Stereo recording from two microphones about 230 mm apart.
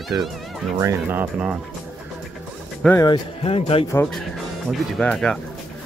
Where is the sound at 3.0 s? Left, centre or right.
Left.